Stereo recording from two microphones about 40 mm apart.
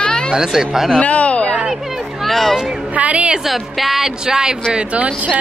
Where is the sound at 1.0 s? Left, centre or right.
Left.